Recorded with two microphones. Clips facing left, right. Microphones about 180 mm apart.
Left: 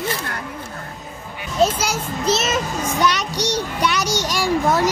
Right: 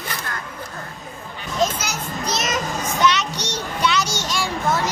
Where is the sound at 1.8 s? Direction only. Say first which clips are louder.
Left 5 dB; 30° left (ahead or behind).